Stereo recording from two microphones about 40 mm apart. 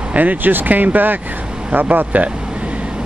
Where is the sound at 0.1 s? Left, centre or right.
Right.